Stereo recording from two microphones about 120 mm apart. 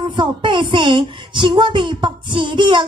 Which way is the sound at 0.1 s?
40° right (ahead or behind).